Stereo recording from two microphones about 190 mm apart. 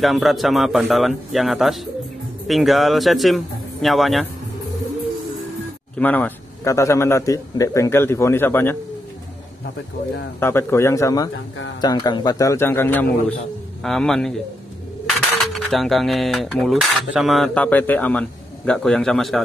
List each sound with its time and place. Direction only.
0.0 s cutlery: centre (ahead or behind)
5.9 s a man's voice: 10° left (ahead or behind)
10.4 s a man's voice: 15° left (ahead or behind)
13.8 s cutlery: centre (ahead or behind)
15.5 s cutlery: centre (ahead or behind)